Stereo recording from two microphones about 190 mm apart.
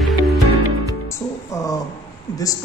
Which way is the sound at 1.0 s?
15° left (ahead or behind).